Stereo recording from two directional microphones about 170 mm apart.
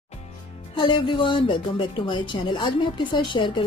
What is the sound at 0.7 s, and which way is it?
A woman's voice, 30° left (ahead or behind).